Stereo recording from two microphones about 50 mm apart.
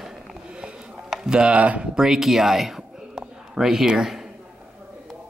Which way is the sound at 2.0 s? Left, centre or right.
Centre.